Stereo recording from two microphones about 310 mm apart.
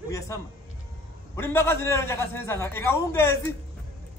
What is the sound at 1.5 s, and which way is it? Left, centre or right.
A man's voice, centre.